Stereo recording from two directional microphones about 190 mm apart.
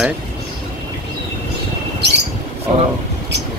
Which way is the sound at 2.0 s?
60° right (ahead or behind).